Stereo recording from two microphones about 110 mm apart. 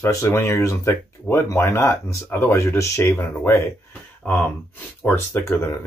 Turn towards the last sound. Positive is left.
turn(degrees=20)  # may be behind; listen again after turning